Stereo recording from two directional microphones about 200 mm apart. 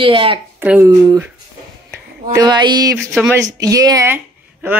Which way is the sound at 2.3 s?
20° right (ahead or behind).